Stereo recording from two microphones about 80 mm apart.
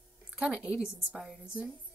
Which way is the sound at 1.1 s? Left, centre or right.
Centre.